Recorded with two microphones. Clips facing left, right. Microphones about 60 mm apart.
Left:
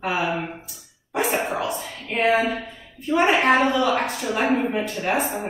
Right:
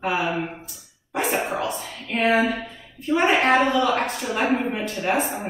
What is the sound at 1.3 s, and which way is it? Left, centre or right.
Speech, left.